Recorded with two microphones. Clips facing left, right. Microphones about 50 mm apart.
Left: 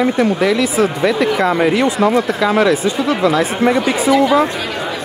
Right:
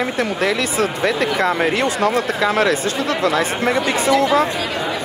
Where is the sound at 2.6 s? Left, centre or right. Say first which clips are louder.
Left 4 dB; right.